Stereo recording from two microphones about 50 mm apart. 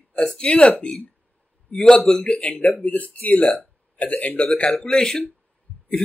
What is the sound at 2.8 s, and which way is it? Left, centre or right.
A man's voice, left.